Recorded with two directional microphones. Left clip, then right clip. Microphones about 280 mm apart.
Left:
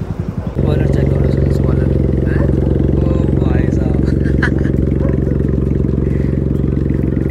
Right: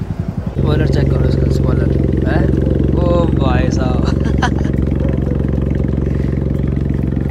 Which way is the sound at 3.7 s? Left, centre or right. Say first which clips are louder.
Even; right.